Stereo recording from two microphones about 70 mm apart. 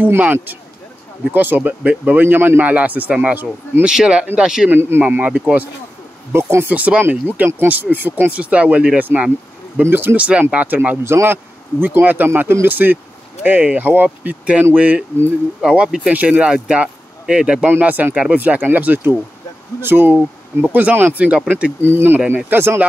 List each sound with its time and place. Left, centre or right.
0.0 s speech: right
2.2 s speech: right
3.8 s speech: centre
4.6 s speech: right
5.0 s speech: right
6.3 s speech: right
6.7 s speech: right
10.1 s speech: centre
11.1 s speech: right
11.8 s speech: right
17.6 s speech: right
20.2 s speech: centre
21.8 s speech: right